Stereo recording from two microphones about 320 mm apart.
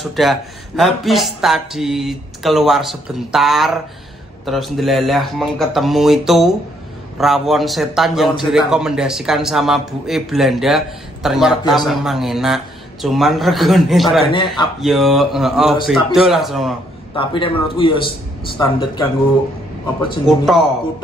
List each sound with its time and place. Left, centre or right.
0.0 s a man's voice: centre
14.2 s a man's voice: centre
14.8 s a man's voice: centre
17.1 s a man's voice: centre